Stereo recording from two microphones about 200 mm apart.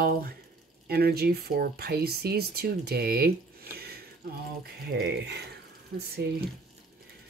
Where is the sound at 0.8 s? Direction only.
50° right (ahead or behind).